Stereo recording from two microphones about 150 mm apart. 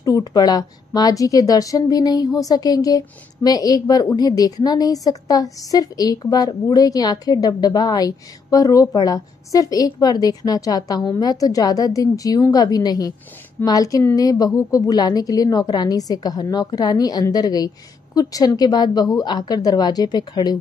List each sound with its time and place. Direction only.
0.0 s a woman's voice: 25° left (ahead or behind)